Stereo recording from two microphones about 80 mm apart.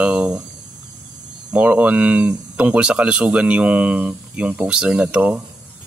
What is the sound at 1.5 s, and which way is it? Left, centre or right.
Speech, centre.